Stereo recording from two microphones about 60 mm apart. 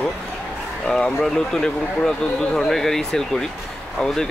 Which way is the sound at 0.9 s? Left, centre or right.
Centre.